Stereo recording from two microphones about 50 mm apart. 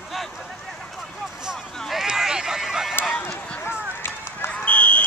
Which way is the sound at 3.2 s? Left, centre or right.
Left.